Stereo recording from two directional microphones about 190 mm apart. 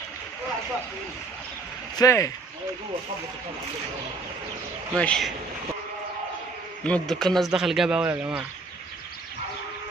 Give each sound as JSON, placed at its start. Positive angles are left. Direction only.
{"t": 2.0, "sound": "speech", "side_deg": 15}
{"t": 4.9, "sound": "speech", "side_deg": 5}
{"t": 6.8, "sound": "speech", "side_deg": 5}